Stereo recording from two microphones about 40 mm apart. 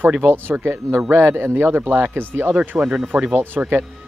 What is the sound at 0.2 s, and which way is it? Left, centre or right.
A man's voice, right.